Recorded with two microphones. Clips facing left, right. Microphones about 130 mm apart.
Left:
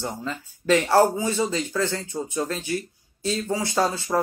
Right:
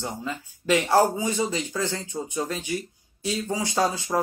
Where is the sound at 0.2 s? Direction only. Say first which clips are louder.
Left 1 dB; 15° right (ahead or behind).